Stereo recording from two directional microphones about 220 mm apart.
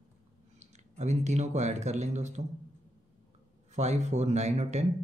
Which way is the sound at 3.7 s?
30° right (ahead or behind).